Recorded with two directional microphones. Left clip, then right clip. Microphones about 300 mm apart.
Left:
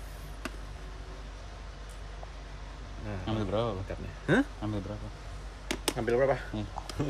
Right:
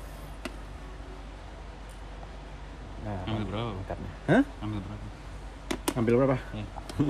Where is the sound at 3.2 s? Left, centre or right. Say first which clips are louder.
Left 5 dB; centre.